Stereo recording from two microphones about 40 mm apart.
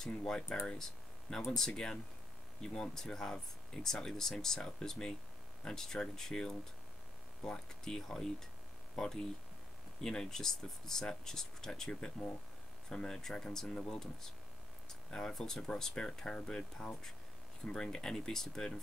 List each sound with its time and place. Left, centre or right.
0.7 s speech: centre